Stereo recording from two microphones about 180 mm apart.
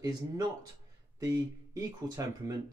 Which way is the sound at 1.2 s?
20° right (ahead or behind).